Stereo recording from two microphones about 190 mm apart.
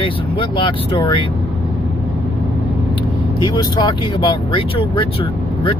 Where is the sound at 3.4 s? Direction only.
25° left (ahead or behind).